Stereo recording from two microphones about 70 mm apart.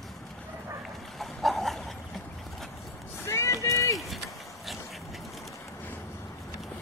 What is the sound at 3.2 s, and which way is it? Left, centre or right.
Vehicle, left.